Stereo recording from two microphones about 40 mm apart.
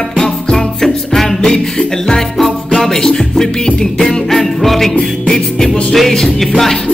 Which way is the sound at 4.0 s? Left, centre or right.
Centre.